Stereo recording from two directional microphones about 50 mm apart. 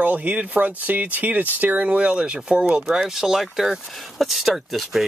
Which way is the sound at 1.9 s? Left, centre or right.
Right.